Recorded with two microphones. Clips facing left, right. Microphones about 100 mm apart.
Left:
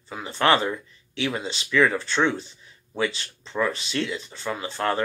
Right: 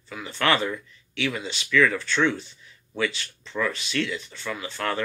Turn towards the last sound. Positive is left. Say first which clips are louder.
# left 3 dB
turn(degrees=30)  # may be behind; listen again after turning